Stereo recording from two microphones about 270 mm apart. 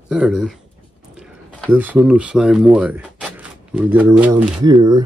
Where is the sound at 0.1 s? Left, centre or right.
Centre.